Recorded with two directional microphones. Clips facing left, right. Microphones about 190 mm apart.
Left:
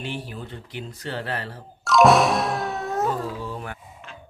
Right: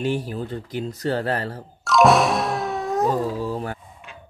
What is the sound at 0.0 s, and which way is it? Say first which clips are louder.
Speech: right 8 dB; 40° right (ahead or behind).